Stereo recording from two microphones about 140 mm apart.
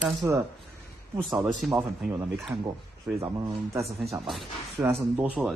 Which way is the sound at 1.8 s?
15° right (ahead or behind).